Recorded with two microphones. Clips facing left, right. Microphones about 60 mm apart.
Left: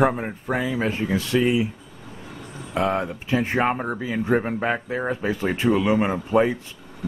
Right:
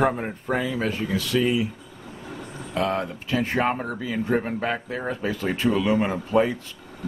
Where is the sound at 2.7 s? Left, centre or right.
Left.